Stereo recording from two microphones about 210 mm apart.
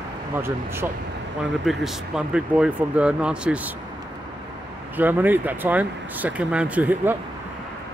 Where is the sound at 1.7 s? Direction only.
Centre (ahead or behind).